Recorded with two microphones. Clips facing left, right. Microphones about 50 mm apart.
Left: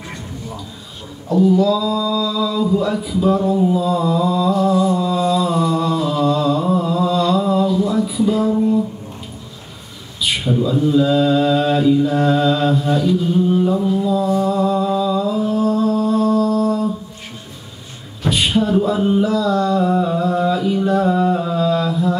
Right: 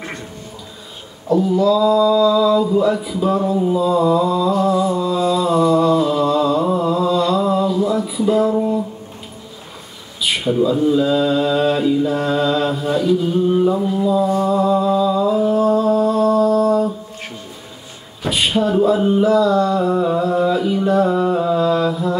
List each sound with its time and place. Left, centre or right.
1.3 s speech: centre
2.0 s a sound: centre
2.3 s speech: centre
4.6 s a sound: centre
10.2 s speech: centre
14.4 s music: centre
16.3 s mantra: centre
18.2 s a sound: centre
19.4 s music: centre